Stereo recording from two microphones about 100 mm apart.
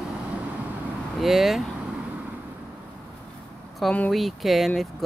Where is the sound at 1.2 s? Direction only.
Centre (ahead or behind).